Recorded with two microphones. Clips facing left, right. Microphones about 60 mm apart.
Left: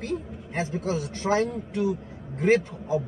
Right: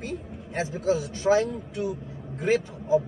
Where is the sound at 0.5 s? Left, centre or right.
Left.